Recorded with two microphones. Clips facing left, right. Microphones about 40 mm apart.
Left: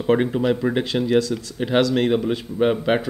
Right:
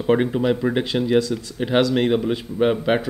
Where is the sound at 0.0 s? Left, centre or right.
Centre.